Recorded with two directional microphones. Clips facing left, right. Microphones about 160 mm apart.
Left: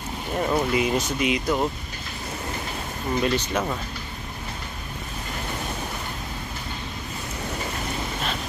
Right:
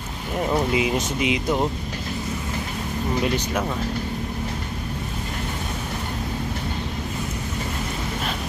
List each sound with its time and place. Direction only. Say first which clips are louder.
0.5 s speech: right 1 dB; 10° right (ahead or behind)
3.3 s speech: even; 15° right (ahead or behind)